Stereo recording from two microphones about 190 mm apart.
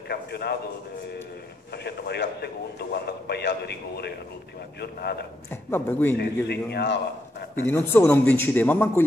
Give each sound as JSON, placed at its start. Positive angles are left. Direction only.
{"t": 0.1, "sound": "speech", "side_deg": 60}
{"t": 1.7, "sound": "speech", "side_deg": 60}
{"t": 5.5, "sound": "a man's voice", "side_deg": 10}
{"t": 6.1, "sound": "speech", "side_deg": 60}
{"t": 7.6, "sound": "a man's voice", "side_deg": 10}